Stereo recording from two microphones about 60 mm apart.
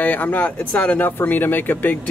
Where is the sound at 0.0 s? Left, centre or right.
Left.